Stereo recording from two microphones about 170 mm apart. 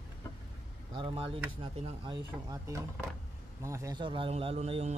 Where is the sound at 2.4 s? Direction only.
20° right (ahead or behind).